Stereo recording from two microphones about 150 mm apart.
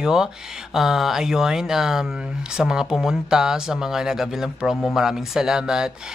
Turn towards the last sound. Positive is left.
turn(degrees=-5)  # may be behind; listen again after turning